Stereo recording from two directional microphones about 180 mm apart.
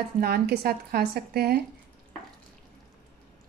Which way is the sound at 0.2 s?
60° right (ahead or behind).